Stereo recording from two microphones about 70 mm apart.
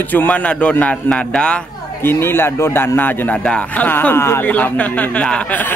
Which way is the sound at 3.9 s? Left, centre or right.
Left.